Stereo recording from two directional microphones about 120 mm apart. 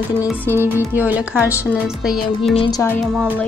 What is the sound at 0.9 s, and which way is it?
Speech, 15° right (ahead or behind).